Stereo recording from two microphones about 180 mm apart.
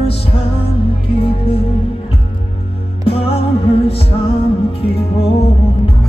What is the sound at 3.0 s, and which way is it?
Music, 30° left (ahead or behind).